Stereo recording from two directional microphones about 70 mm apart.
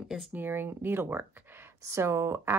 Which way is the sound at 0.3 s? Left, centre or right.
Right.